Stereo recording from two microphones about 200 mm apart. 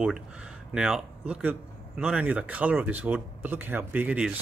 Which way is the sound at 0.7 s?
Centre (ahead or behind).